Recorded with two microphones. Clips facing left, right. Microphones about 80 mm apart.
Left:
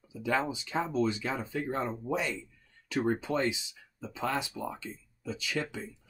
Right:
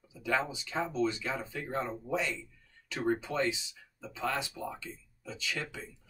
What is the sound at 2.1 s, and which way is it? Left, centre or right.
Speech, centre.